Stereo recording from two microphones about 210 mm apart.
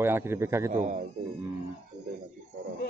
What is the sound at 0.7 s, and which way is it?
Speech, 35° right (ahead or behind).